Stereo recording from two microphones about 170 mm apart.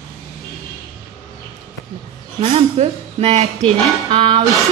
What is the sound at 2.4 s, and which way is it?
Speech, 40° right (ahead or behind).